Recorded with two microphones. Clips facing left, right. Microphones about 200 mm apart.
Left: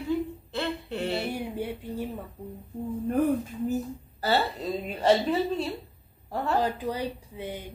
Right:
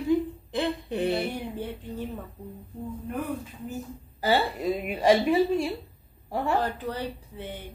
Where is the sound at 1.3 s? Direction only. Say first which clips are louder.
Left 1 dB; 10° left (ahead or behind).